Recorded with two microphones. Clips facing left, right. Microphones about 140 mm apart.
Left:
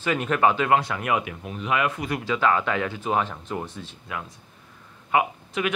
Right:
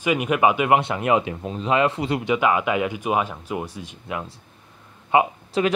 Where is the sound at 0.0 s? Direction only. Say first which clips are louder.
Right 2 dB; 10° right (ahead or behind).